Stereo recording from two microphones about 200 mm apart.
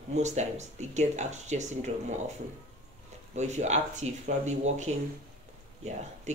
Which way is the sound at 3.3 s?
35° right (ahead or behind).